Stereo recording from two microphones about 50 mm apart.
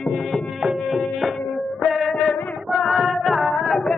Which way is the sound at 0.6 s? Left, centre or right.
Centre.